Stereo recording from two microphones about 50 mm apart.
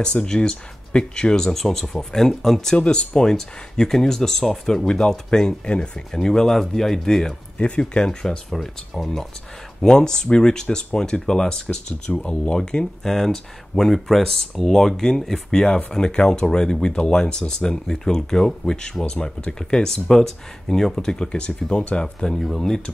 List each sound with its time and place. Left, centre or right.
0.0 s speech: centre
2.8 s speech: centre
7.5 s speech: left
22.4 s speech: centre